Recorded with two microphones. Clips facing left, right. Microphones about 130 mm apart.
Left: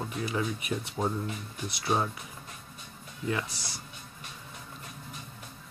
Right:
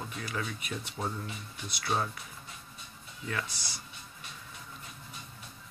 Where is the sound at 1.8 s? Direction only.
20° left (ahead or behind).